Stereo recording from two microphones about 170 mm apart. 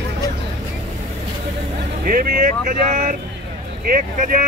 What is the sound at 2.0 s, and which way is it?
Speech, 55° right (ahead or behind).